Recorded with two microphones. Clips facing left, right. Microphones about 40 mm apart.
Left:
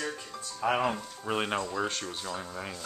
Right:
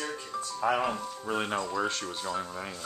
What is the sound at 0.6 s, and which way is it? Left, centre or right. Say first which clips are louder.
Speech: even; centre.